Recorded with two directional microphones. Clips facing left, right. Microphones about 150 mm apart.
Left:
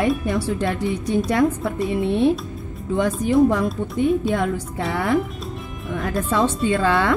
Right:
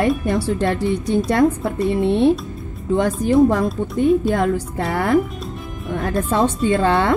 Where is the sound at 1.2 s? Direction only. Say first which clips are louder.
Right 3 dB; 45° right (ahead or behind).